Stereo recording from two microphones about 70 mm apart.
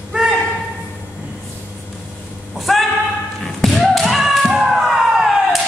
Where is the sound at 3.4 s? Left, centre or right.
Centre.